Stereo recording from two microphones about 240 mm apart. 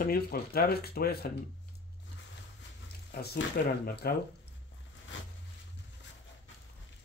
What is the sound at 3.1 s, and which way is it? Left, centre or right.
Speech, left.